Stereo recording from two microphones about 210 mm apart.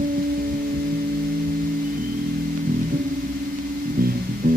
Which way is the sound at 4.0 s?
45° right (ahead or behind).